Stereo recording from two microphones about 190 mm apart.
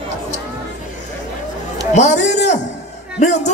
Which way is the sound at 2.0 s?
40° left (ahead or behind).